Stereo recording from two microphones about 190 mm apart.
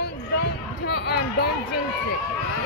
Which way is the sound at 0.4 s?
55° left (ahead or behind).